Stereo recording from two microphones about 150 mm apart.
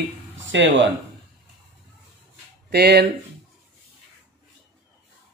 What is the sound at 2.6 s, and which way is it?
Speech, 90° right.